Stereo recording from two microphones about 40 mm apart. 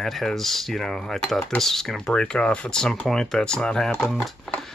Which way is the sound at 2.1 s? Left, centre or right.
Left.